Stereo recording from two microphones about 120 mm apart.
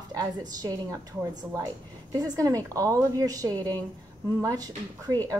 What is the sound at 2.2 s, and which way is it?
Speech, 30° right (ahead or behind).